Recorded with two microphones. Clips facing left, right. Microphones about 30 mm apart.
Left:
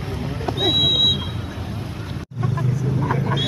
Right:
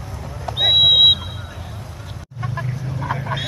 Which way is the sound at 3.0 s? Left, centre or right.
Centre.